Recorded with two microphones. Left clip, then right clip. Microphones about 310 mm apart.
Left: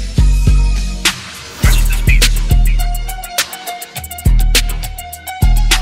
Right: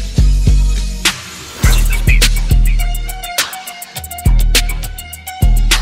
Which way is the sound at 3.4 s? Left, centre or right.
Centre.